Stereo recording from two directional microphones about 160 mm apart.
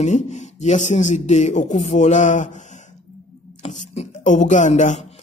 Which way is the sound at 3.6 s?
45° left (ahead or behind).